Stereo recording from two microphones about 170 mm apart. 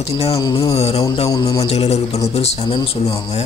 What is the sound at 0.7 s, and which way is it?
Speech, 35° left (ahead or behind).